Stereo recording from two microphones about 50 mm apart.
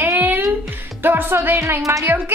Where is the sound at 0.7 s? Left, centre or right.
Right.